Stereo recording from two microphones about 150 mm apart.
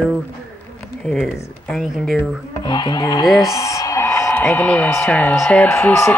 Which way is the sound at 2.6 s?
30° left (ahead or behind).